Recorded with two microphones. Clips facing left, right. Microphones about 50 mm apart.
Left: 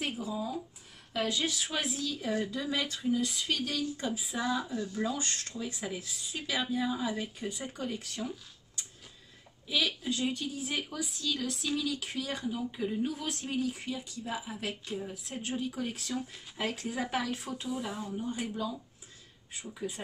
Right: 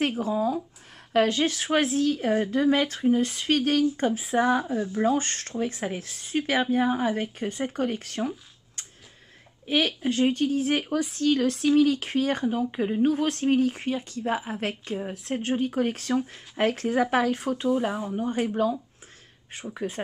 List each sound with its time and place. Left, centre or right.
0.0 s a woman's voice: right